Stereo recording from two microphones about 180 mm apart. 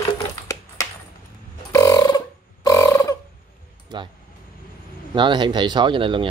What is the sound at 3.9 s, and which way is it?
Music, 25° right (ahead or behind).